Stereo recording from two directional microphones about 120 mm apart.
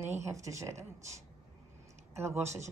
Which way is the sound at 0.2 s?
25° right (ahead or behind).